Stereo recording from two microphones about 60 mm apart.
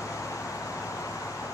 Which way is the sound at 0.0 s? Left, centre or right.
Left.